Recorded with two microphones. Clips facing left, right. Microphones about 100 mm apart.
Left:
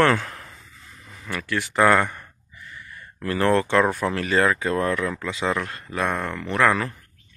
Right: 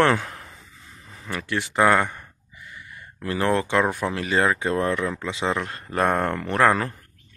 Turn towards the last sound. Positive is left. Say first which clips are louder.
# right 1 dB
turn(degrees=-30)  # may be behind; listen again after turning